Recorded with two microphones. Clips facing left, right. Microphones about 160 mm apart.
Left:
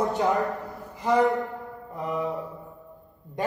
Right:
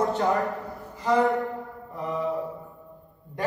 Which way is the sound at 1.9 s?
20° left (ahead or behind).